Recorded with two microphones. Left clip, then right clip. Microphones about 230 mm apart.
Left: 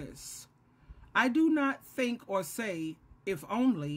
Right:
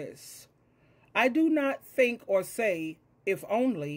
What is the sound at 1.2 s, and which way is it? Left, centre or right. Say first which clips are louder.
Speech: right 5 dB; centre.